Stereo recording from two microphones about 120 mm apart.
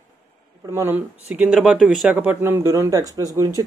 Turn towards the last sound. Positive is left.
turn(degrees=-25)  # may be behind; listen again after turning